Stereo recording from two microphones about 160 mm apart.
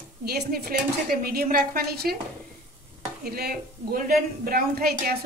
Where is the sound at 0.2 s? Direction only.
75° right (ahead or behind).